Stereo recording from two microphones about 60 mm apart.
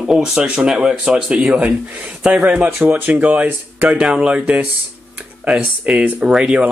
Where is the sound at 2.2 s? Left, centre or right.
Right.